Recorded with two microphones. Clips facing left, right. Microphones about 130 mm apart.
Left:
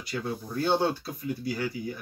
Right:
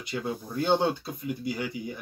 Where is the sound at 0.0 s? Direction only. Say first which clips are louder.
Right 1 dB; 20° right (ahead or behind).